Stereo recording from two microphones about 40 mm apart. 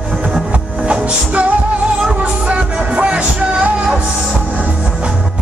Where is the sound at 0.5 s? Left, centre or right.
Right.